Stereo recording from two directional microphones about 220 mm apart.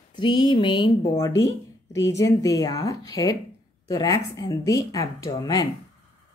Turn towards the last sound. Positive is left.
turn(degrees=20)  # may be behind; listen again after turning